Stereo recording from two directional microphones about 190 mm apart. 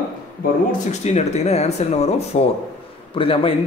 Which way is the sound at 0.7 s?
35° left (ahead or behind).